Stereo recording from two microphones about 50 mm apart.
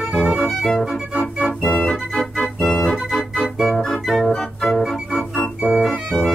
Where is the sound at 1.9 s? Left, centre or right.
Centre.